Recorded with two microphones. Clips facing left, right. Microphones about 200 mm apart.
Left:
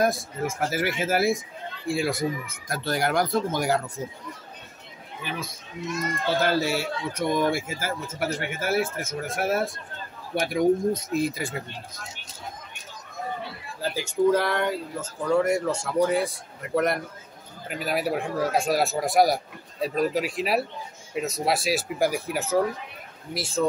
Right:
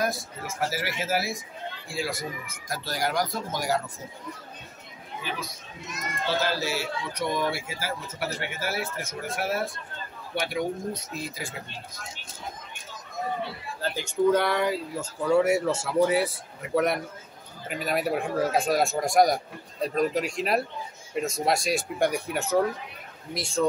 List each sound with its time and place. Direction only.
0.0 s speech: 50° left (ahead or behind)
6.4 s speech: 55° left (ahead or behind)
13.7 s speech: 5° left (ahead or behind)